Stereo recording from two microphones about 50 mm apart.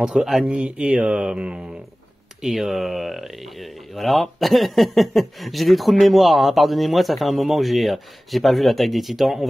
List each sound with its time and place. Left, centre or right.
0.0 s speech: centre
0.5 s mantra: right
2.4 s speech: centre